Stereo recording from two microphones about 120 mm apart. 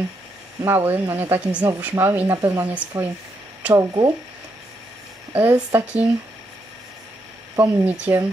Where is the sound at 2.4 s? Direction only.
25° right (ahead or behind).